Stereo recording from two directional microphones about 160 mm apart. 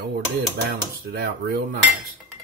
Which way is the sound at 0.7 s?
90° right.